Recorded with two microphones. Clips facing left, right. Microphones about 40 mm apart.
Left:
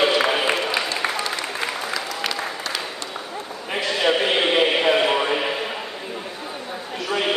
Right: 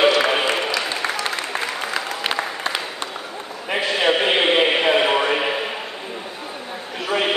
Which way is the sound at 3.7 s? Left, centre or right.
Centre.